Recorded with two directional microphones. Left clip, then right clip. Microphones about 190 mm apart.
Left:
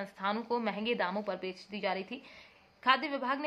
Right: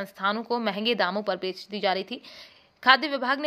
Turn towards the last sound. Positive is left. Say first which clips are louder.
# right 8 dB
turn(degrees=-35)  # may be behind; listen again after turning